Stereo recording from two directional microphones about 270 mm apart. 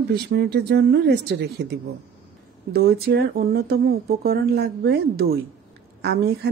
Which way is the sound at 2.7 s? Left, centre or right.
Right.